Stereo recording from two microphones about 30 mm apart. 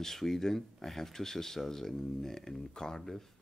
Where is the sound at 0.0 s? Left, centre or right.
Centre.